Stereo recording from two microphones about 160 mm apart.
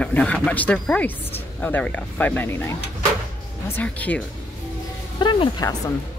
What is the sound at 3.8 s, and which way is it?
Speech, 10° left (ahead or behind).